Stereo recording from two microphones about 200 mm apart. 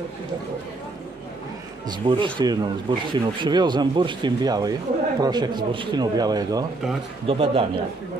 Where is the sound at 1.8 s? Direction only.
20° right (ahead or behind).